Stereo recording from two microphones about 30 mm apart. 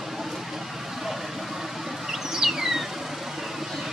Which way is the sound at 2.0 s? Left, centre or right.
Centre.